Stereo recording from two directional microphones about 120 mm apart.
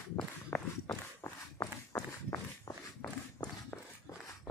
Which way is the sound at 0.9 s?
25° left (ahead or behind).